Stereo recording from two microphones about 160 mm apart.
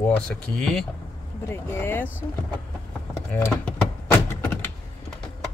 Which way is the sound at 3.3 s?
15° left (ahead or behind).